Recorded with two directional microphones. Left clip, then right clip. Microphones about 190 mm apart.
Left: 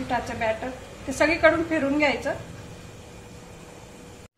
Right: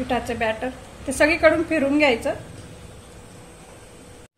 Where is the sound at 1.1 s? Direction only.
55° right (ahead or behind).